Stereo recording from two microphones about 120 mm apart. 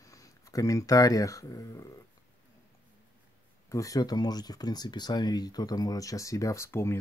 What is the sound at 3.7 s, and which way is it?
Speech, 30° left (ahead or behind).